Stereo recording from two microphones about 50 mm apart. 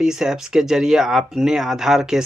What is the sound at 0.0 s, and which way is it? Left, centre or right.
Speech, centre.